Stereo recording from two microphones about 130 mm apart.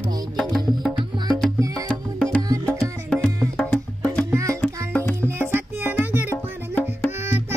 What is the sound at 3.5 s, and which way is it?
Music, 10° left (ahead or behind).